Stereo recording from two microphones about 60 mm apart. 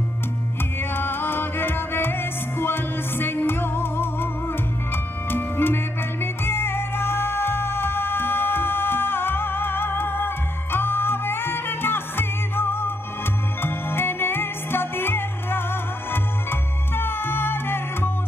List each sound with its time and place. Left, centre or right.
0.7 s music: left